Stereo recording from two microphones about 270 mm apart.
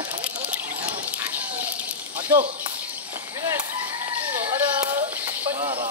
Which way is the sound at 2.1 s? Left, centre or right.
Centre.